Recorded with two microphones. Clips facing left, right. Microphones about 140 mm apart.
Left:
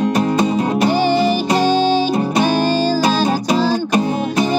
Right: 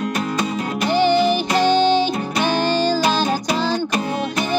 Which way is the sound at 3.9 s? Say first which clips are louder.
Left 5 dB; 30° left (ahead or behind).